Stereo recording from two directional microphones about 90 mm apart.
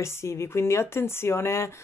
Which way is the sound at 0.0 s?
30° left (ahead or behind).